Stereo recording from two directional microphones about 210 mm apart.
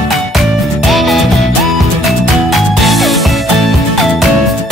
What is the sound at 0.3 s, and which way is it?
Music, centre (ahead or behind).